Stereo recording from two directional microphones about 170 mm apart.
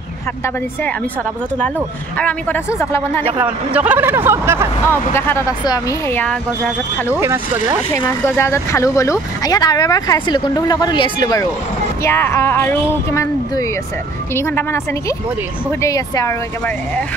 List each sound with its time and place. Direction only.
2.1 s speech: 10° left (ahead or behind)
3.7 s speech: 10° right (ahead or behind)
4.8 s speech: 15° left (ahead or behind)
7.2 s speech: 15° right (ahead or behind)
8.2 s speech: 15° left (ahead or behind)
12.0 s speech: 15° left (ahead or behind)